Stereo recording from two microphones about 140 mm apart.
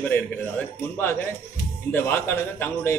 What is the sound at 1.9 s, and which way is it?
A man's voice, 15° left (ahead or behind).